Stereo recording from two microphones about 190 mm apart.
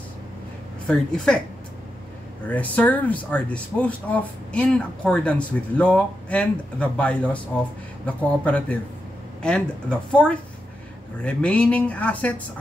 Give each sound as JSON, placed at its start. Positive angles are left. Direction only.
{"t": 0.8, "sound": "speech", "side_deg": 5}
{"t": 2.4, "sound": "speech", "side_deg": 10}